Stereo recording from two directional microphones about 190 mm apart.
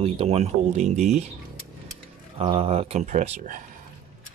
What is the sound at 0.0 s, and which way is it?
Speech, 35° right (ahead or behind).